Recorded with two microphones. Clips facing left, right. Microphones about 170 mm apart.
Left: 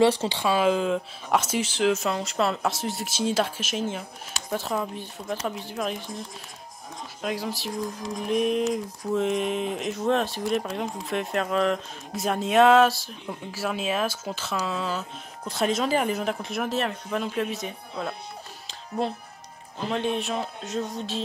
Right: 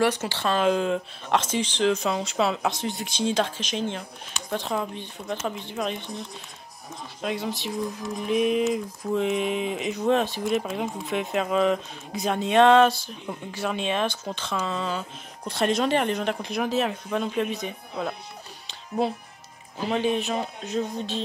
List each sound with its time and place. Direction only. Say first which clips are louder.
0.0 s speech: left 3 dB; 30° left (ahead or behind)
0.3 s speech: even; 10° left (ahead or behind)
18.7 s music: right 2 dB; 5° right (ahead or behind)
19.8 s speech: right 2 dB; centre (ahead or behind)